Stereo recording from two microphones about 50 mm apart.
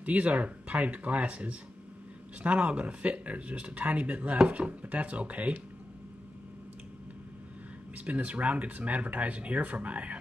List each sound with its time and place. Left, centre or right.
0.0 s speech: right
7.9 s speech: right